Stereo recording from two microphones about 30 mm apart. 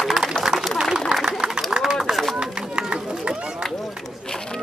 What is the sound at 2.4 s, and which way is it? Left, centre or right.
Run, right.